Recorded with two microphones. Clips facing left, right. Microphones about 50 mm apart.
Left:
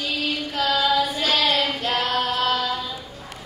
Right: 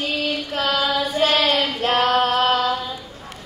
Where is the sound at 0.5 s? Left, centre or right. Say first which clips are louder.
Left 1 dB; right.